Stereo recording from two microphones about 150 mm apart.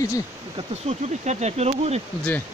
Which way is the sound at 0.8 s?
50° right (ahead or behind).